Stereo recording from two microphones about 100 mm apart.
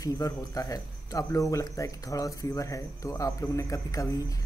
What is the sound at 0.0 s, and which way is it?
Speech, 35° left (ahead or behind).